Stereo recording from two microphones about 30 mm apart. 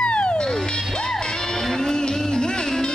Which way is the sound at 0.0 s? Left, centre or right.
Left.